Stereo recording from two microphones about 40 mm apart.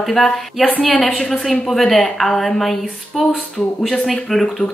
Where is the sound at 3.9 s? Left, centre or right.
Centre.